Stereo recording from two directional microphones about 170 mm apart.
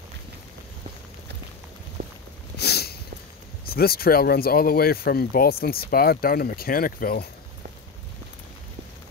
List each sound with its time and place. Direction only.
2.0 s walk: 60° right (ahead or behind)
2.6 s a sound: 70° left (ahead or behind)
3.7 s speech: 65° left (ahead or behind)